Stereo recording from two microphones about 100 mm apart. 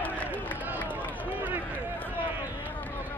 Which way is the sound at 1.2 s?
15° right (ahead or behind).